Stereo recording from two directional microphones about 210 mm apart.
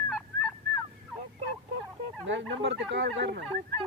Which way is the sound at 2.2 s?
60° right (ahead or behind).